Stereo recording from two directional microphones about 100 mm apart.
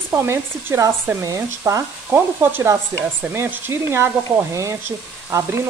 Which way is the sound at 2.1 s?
20° right (ahead or behind).